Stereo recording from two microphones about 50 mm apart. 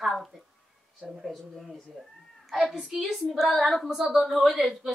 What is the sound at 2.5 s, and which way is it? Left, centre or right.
Speech, centre.